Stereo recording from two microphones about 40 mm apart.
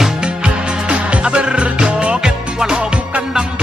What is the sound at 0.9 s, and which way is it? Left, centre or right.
Music, right.